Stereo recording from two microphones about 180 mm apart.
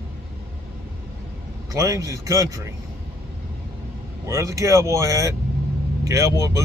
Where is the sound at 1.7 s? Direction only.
15° right (ahead or behind).